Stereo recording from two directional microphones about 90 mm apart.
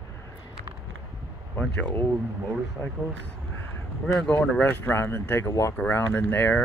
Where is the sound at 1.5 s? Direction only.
20° left (ahead or behind).